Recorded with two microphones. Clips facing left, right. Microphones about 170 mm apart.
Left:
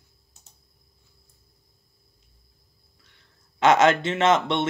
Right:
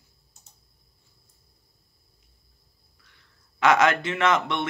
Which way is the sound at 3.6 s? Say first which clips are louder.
Left 2 dB; 25° left (ahead or behind).